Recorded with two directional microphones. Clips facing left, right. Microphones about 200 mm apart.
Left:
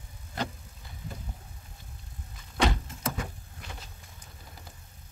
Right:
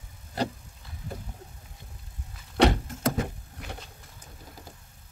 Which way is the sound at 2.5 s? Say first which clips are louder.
Right 6 dB; 60° right (ahead or behind).